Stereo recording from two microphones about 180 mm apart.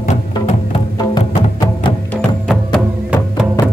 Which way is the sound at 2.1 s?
5° left (ahead or behind).